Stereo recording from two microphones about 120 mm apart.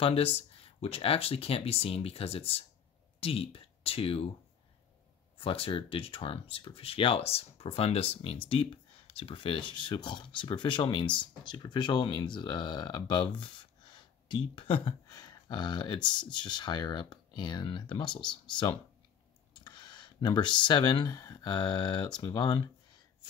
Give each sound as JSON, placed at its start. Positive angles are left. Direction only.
{"t": 0.0, "sound": "speech", "side_deg": 55}
{"t": 5.4, "sound": "speech", "side_deg": 50}
{"t": 15.0, "sound": "speech", "side_deg": 35}
{"t": 19.6, "sound": "speech", "side_deg": 40}